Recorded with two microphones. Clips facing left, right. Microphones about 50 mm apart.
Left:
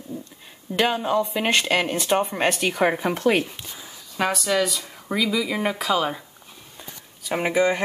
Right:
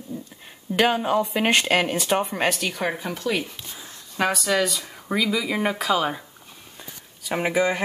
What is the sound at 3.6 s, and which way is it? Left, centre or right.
Speech, centre.